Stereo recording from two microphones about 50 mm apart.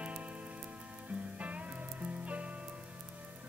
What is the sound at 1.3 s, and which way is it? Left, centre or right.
Music, right.